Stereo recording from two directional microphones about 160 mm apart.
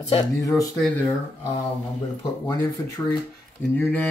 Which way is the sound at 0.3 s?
20° left (ahead or behind).